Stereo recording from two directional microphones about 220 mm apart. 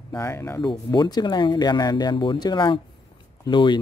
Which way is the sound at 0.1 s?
10° left (ahead or behind).